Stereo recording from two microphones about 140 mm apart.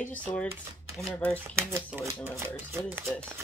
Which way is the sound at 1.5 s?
20° right (ahead or behind).